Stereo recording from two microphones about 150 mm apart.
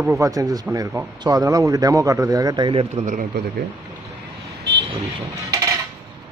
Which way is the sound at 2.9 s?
60° right (ahead or behind).